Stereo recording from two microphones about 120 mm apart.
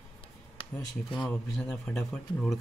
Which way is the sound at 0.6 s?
50° left (ahead or behind).